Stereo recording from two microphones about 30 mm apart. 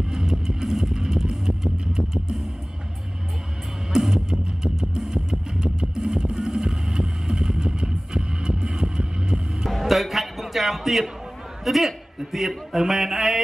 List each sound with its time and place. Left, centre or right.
0.1 s vehicle: centre
0.9 s music: centre
1.3 s vehicle: centre
4.0 s music: centre
9.7 s a man's voice: centre